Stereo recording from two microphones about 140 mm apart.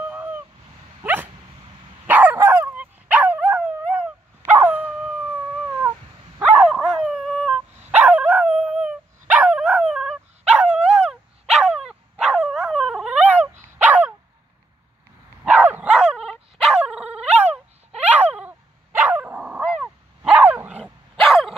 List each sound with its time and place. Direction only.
0.1 s a sound: 10° right (ahead or behind)
1.0 s dog: 10° right (ahead or behind)
6.4 s dog: 5° right (ahead or behind)
15.4 s dog: 10° right (ahead or behind)
17.3 s dog: 50° right (ahead or behind)
18.1 s dog: 10° right (ahead or behind)
21.2 s dog: centre (ahead or behind)